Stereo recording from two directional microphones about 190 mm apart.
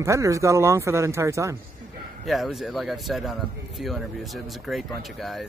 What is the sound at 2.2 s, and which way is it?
Speech, centre (ahead or behind).